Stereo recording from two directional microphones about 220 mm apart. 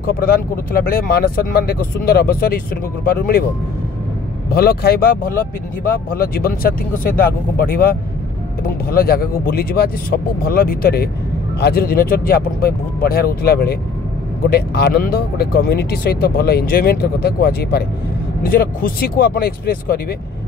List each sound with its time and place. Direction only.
0.0 s speech: 40° left (ahead or behind)
4.5 s speech: 45° left (ahead or behind)